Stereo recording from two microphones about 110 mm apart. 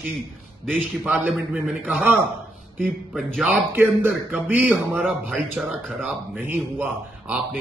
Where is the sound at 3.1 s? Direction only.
Centre (ahead or behind).